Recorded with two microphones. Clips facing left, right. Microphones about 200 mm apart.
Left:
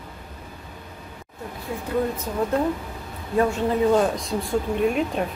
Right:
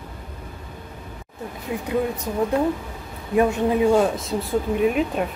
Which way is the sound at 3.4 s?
15° right (ahead or behind).